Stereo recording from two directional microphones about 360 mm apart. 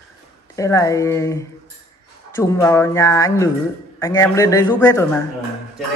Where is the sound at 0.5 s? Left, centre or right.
Centre.